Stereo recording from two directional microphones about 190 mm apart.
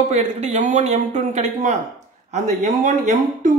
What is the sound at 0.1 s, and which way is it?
Speech, 35° right (ahead or behind).